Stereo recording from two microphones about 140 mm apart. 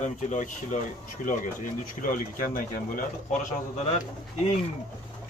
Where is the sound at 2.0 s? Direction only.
80° left.